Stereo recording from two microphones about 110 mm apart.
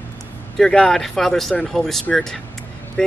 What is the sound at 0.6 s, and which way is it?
Speech, 5° left (ahead or behind).